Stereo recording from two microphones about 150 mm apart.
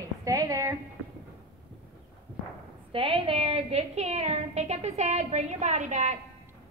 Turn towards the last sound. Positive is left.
turn(degrees=-55)  # may be behind; listen again after turning